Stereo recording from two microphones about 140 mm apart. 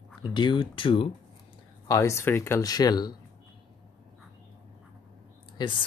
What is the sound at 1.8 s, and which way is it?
Speech, 20° left (ahead or behind).